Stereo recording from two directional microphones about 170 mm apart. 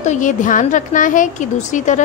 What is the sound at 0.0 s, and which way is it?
A woman's voice, 45° left (ahead or behind).